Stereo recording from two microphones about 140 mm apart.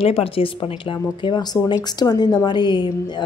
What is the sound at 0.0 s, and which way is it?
Speech, 45° left (ahead or behind).